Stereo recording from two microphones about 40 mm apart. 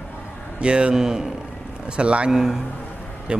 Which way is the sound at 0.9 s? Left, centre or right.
Centre.